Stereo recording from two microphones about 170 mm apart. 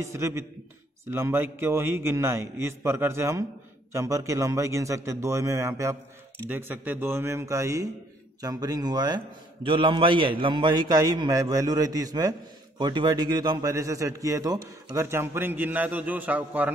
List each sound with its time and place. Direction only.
0.0 s a man's voice: 15° right (ahead or behind)